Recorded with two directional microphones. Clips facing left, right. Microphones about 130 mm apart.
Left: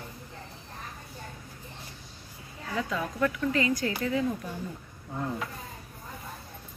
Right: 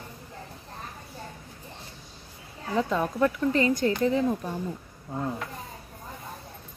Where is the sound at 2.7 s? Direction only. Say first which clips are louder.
Right 6 dB; 30° right (ahead or behind).